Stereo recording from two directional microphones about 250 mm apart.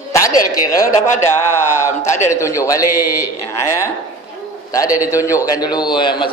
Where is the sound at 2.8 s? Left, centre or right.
Left.